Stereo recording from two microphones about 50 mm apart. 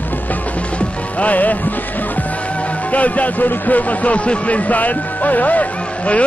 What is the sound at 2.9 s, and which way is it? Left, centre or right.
A man's voice, left.